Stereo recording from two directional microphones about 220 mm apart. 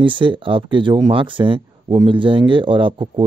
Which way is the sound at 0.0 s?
20° right (ahead or behind).